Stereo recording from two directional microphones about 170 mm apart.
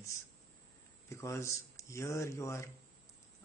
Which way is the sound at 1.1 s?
15° left (ahead or behind).